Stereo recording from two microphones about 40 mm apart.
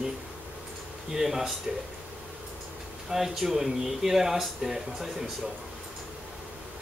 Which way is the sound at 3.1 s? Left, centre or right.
Centre.